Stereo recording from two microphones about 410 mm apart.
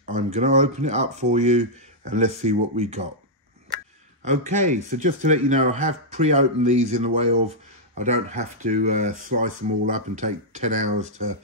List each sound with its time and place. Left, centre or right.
0.0 s speech: centre
4.2 s speech: centre